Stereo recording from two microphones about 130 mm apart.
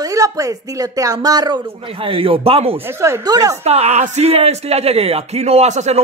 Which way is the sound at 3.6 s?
55° right (ahead or behind).